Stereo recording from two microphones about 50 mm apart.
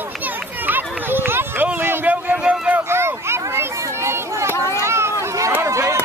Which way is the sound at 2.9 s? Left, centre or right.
Right.